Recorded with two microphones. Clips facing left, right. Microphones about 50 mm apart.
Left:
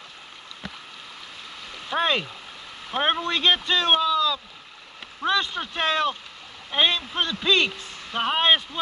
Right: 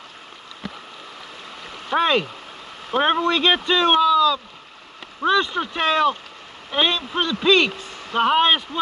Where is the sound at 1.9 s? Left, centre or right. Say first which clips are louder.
Right 5 dB; right.